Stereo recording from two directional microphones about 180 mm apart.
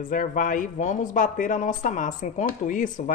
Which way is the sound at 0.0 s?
45° left (ahead or behind).